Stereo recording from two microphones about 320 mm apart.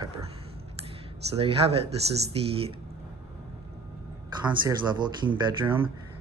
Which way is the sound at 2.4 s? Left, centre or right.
Centre.